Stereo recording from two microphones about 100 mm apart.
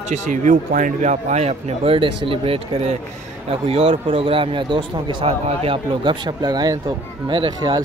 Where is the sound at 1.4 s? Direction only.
90° right.